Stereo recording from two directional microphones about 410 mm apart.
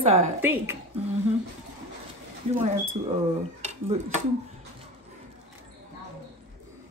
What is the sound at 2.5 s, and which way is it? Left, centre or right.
Speech, centre.